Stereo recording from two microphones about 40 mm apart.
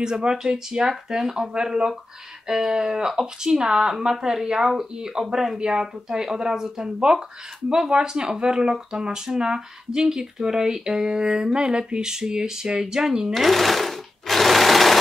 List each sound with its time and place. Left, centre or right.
0.0 s speech: centre
13.3 s sewing machine: centre